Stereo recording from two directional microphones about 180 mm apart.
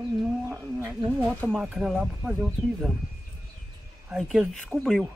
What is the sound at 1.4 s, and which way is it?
Speech, 5° left (ahead or behind).